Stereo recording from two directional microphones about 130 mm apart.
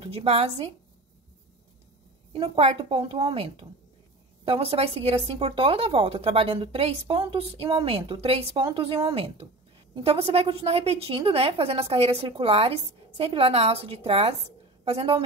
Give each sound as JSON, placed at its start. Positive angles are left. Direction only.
{"t": 0.0, "sound": "speech", "side_deg": -50}
{"t": 2.5, "sound": "speech", "side_deg": -45}